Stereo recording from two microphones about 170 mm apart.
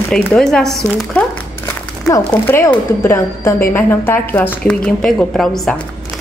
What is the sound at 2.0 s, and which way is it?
A woman's voice, 15° left (ahead or behind).